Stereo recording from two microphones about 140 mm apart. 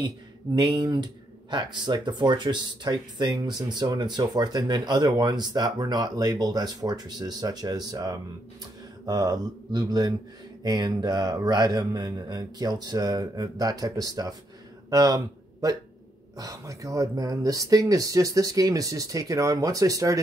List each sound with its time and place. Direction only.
0.6 s speech: 30° right (ahead or behind)